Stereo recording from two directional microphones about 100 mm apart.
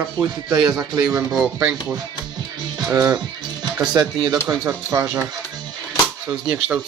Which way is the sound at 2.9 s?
35° right (ahead or behind).